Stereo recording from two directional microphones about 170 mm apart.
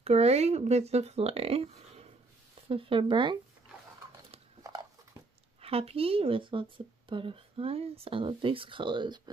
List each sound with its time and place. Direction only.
0.0 s speech: 40° right (ahead or behind)
5.6 s speech: 35° right (ahead or behind)